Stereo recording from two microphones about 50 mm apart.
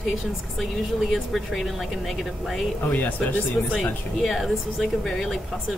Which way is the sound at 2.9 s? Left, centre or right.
Left.